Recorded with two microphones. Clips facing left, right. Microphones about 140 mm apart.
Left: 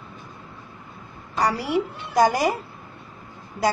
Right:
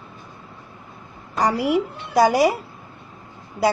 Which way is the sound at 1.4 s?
15° right (ahead or behind).